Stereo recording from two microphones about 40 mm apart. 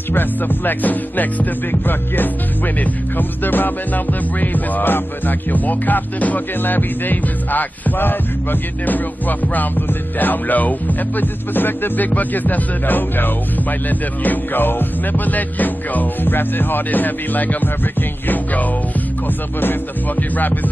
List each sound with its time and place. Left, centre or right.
0.1 s music: left
11.1 s music: left
16.3 s music: left
20.2 s music: left